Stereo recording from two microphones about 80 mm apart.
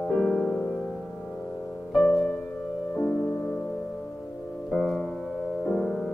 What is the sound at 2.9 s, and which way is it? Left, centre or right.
Music, centre.